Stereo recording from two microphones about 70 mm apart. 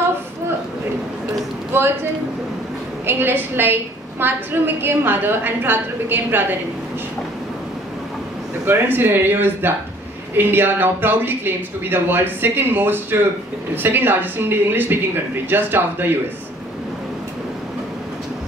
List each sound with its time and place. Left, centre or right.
3.1 s a woman's voice: right
8.6 s a woman's voice: right